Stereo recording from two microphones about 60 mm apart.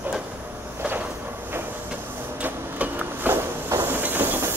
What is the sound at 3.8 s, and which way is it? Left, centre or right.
Train, right.